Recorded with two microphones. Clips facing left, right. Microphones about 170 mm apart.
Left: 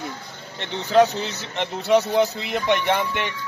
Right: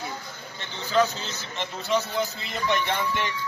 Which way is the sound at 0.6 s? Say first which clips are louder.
Left 6 dB; 70° left (ahead or behind).